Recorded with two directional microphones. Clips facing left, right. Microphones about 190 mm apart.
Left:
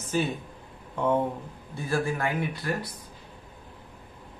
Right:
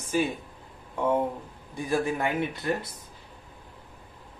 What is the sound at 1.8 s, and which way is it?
Speech, 20° right (ahead or behind).